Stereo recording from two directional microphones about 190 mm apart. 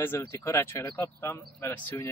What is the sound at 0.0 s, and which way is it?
Speech, 15° left (ahead or behind).